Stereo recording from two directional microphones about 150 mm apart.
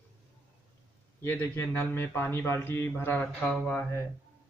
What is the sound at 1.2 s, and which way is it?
Speech, 15° left (ahead or behind).